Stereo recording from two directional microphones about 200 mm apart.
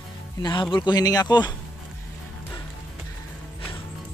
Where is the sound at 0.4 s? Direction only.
20° left (ahead or behind).